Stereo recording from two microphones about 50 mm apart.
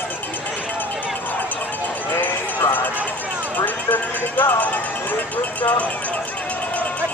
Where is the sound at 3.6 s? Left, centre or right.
Left.